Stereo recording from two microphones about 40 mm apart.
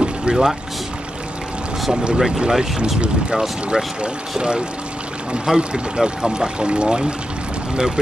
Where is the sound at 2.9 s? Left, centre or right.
Right.